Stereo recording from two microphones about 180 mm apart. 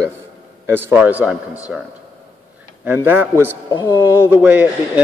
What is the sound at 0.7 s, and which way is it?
A man's voice, 10° right (ahead or behind).